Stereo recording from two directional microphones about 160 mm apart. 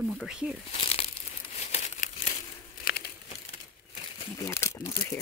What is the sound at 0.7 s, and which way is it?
Crumpling, 40° left (ahead or behind).